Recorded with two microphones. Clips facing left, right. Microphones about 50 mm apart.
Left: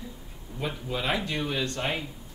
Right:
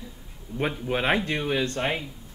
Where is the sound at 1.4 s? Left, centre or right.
Right.